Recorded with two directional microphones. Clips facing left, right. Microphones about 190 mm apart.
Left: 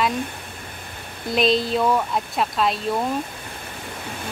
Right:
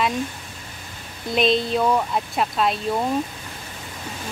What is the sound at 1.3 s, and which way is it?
Speech, centre (ahead or behind).